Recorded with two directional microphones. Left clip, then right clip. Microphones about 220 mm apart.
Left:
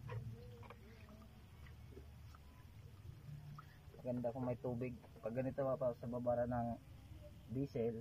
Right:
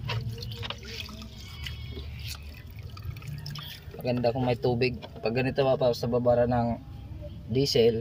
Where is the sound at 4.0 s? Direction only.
35° right (ahead or behind).